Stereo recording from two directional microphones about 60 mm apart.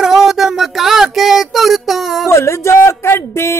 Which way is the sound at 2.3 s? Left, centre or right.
Left.